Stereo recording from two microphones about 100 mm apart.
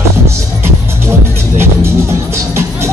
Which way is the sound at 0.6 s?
25° right (ahead or behind).